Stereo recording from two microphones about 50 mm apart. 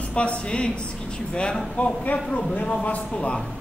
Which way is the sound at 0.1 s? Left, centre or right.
Left.